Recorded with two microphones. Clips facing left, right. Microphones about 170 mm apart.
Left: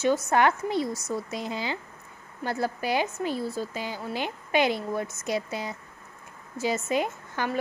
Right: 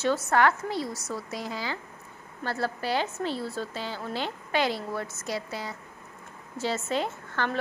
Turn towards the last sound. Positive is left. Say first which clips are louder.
# left 1 dB
turn(degrees=10)  # may be behind; listen again after turning